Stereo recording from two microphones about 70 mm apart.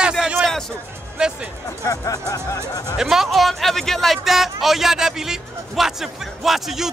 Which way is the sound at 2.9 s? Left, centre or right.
Centre.